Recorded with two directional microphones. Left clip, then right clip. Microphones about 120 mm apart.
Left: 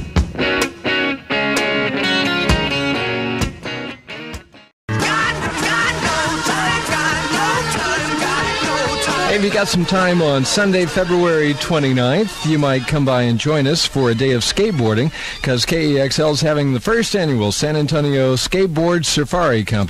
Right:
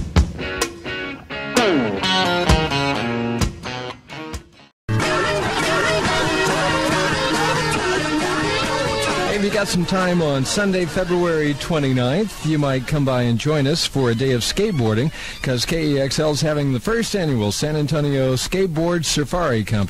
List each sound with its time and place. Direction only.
0.1 s music: 5° left (ahead or behind)
4.9 s music: 25° right (ahead or behind)
6.6 s music: 25° right (ahead or behind)